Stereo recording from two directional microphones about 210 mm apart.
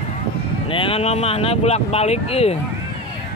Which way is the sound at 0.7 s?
25° left (ahead or behind).